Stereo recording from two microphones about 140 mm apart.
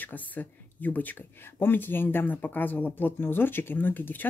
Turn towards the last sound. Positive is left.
turn(degrees=15)  # may be behind; listen again after turning